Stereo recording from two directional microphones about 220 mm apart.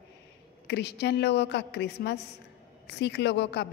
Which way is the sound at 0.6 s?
50° left (ahead or behind).